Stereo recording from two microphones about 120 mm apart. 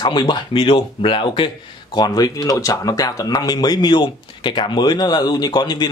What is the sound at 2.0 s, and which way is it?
Speech, 30° left (ahead or behind).